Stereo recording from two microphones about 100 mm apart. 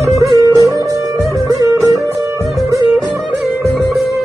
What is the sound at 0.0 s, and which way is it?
Music, 35° right (ahead or behind).